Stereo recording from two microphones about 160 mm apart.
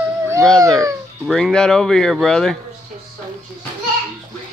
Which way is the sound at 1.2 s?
Centre (ahead or behind).